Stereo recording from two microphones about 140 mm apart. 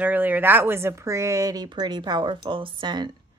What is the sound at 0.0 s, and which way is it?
Speech, 10° right (ahead or behind).